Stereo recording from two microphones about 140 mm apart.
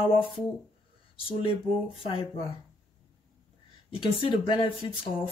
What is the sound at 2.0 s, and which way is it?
Speech, 40° left (ahead or behind).